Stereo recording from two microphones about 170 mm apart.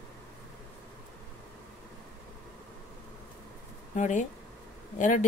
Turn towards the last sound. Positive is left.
turn(degrees=45)  # may be behind; listen again after turning